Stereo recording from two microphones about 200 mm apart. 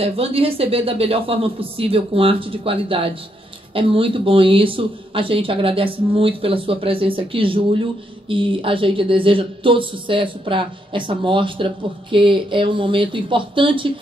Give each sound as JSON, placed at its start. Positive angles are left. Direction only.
{"t": 0.0, "sound": "speech", "side_deg": -30}